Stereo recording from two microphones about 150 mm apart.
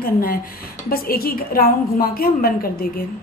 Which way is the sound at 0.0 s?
75° left (ahead or behind).